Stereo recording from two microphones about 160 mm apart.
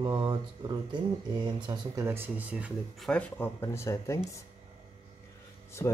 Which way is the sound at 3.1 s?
10° left (ahead or behind).